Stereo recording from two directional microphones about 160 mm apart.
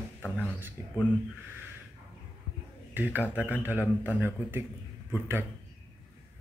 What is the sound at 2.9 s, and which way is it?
A man's voice, 10° right (ahead or behind).